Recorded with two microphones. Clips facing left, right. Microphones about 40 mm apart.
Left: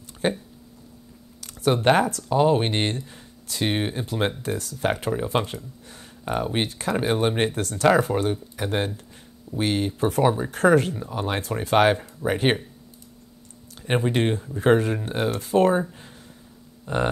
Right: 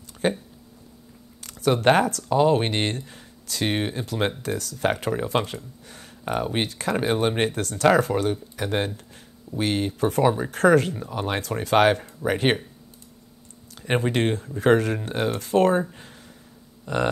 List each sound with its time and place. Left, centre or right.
0.2 s speech: right
1.4 s speech: right
13.8 s speech: right
16.8 s speech: right